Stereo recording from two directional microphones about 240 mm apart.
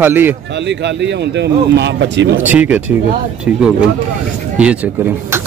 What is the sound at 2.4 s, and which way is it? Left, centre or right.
Speech, centre.